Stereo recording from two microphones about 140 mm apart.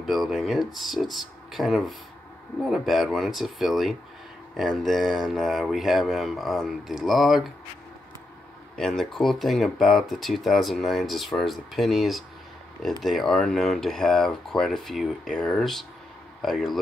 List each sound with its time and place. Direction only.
0.0 s speech: centre (ahead or behind)
8.7 s speech: 5° left (ahead or behind)